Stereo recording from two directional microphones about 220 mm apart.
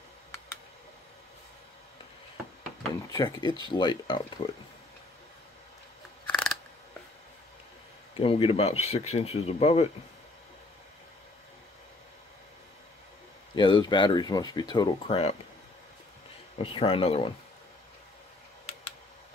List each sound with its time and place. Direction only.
3.1 s speech: 20° left (ahead or behind)
6.2 s scissors: 5° left (ahead or behind)
8.2 s speech: 25° left (ahead or behind)
13.6 s speech: 20° left (ahead or behind)
16.6 s speech: 25° left (ahead or behind)